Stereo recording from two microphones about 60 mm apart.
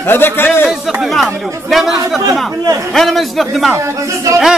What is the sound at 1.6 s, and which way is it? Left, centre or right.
Speech, centre.